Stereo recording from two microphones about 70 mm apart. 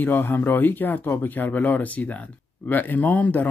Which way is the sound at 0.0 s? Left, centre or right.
Left.